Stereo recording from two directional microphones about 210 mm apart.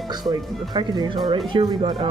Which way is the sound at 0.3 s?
20° right (ahead or behind).